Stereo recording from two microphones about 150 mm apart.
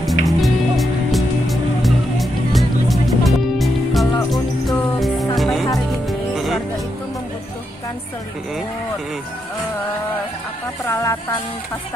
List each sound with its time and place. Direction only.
0.0 s music: centre (ahead or behind)
10.9 s music: 20° left (ahead or behind)